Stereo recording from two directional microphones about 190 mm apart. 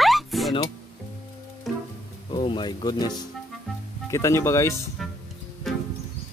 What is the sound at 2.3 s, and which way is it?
Speech, 25° left (ahead or behind).